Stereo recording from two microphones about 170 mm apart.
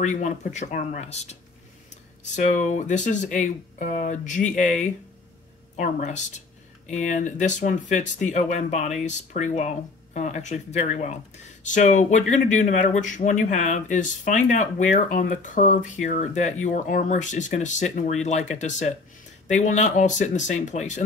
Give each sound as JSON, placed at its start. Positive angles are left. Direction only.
{"t": 0.0, "sound": "a man's voice", "side_deg": 45}